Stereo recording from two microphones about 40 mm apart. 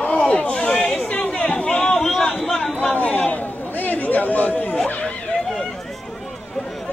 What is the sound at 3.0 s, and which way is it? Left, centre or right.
Chatter, left.